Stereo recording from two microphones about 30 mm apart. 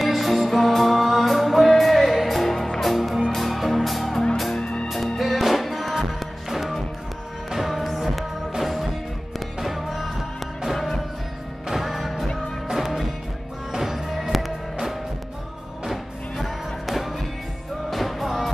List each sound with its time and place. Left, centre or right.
0.0 s music: centre
4.6 s music: left
4.8 s music: centre
15.9 s music: centre